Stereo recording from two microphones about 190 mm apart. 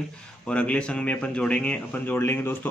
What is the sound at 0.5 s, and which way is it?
Speech, 5° left (ahead or behind).